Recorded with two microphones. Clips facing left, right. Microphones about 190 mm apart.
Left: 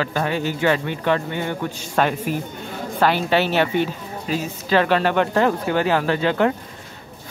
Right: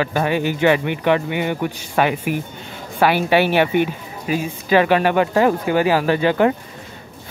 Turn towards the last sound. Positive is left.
turn(degrees=-10)  # may be behind; listen again after turning